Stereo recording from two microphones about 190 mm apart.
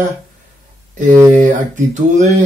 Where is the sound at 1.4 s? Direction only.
40° right (ahead or behind).